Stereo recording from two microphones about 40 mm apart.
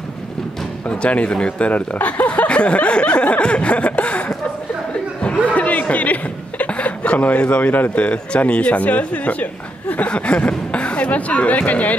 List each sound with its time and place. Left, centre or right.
0.8 s speech: left
1.7 s speech: left
5.5 s speech: left